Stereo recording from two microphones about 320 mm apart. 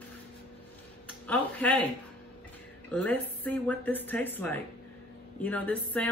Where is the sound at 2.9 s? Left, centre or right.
Centre.